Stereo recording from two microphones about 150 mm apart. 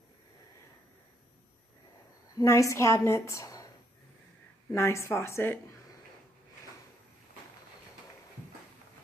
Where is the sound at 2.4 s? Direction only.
20° left (ahead or behind).